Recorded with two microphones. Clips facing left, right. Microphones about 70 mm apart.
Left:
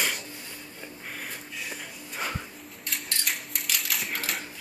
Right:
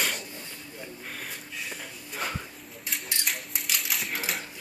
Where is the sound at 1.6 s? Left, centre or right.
Centre.